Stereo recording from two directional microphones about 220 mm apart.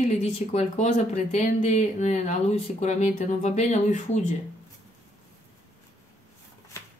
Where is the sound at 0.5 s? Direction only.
30° left (ahead or behind).